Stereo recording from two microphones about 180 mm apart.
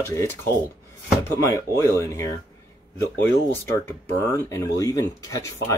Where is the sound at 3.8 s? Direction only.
15° left (ahead or behind).